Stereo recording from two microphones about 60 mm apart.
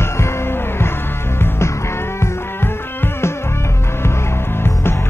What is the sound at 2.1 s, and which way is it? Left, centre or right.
Music, left.